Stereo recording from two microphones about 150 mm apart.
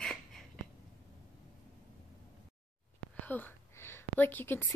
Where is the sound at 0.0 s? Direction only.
5° left (ahead or behind).